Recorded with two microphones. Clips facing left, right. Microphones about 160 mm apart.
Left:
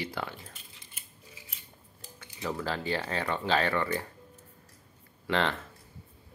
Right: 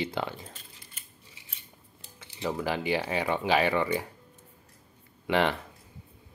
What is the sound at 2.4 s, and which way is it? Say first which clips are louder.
Speech: right 3 dB; 15° right (ahead or behind).